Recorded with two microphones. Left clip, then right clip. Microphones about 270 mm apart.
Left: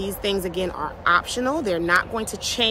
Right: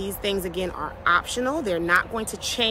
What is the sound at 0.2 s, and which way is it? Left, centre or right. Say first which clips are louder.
Speech: left 2 dB; centre.